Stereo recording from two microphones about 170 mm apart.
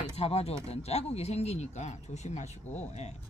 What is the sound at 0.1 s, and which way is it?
Speech, 35° left (ahead or behind).